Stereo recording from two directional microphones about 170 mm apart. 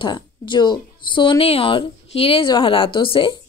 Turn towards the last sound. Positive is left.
turn(degrees=30)  # may be behind; listen again after turning